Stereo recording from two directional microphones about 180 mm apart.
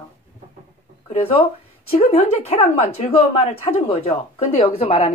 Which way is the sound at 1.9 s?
35° left (ahead or behind).